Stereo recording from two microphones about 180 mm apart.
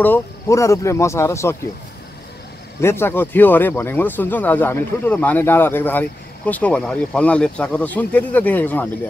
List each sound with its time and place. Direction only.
0.0 s speech: 15° left (ahead or behind)
2.8 s speech: 15° left (ahead or behind)